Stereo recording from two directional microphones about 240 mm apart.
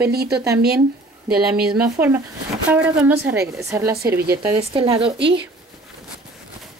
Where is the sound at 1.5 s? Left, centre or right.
Centre.